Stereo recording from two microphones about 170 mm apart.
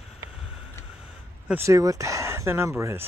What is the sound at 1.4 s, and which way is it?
Speech, 15° right (ahead or behind).